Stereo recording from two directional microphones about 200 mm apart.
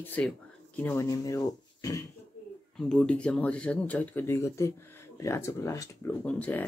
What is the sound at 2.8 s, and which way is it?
Speech, 5° left (ahead or behind).